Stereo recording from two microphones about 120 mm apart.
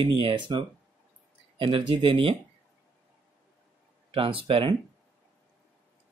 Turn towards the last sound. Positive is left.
turn(degrees=-50)  # may be behind; listen again after turning